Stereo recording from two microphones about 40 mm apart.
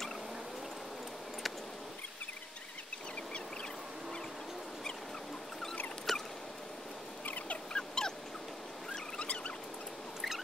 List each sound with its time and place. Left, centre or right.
6.1 s rodents: centre
7.2 s a sound: left
7.7 s dog: centre
9.2 s rodents: left